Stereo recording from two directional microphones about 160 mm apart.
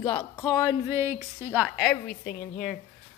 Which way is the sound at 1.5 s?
Centre (ahead or behind).